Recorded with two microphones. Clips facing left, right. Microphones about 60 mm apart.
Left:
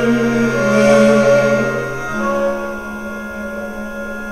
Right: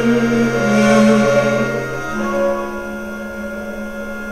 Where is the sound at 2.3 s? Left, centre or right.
Right.